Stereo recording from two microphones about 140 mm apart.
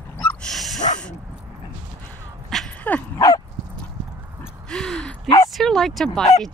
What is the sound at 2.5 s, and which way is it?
Dog, 5° left (ahead or behind).